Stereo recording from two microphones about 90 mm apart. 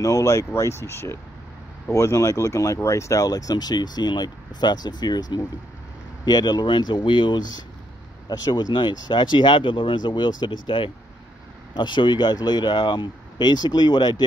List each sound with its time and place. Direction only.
0.0 s speech: 35° left (ahead or behind)